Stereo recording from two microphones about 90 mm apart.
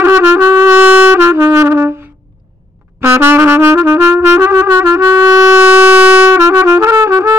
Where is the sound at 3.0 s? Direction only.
25° right (ahead or behind).